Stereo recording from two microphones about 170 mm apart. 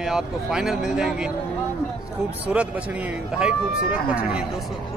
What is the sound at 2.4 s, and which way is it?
A man's voice, 10° right (ahead or behind).